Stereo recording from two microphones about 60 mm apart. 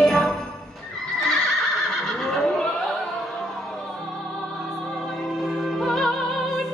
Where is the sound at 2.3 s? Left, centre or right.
Centre.